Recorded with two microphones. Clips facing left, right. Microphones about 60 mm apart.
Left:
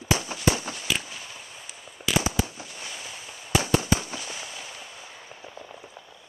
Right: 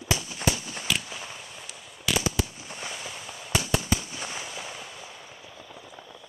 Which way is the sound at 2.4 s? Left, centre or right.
Left.